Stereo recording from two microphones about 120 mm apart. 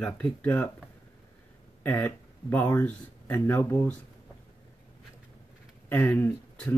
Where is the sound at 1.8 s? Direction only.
15° left (ahead or behind).